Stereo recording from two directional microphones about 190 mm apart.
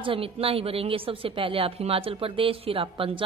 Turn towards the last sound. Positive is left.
turn(degrees=-30)  # may be behind; listen again after turning